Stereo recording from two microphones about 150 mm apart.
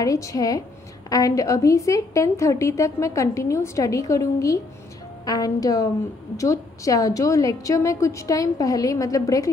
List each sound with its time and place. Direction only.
0.0 s a woman's voice: 25° left (ahead or behind)